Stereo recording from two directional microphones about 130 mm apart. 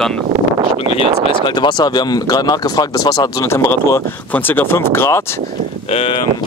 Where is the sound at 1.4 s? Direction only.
35° left (ahead or behind); by 5.4 s 20° left (ahead or behind).